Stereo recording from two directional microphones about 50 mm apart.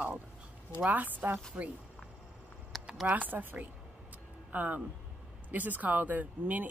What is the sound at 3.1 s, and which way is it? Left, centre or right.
Speech, right.